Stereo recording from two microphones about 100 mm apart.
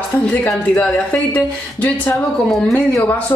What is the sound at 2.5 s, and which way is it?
Speech, 5° left (ahead or behind).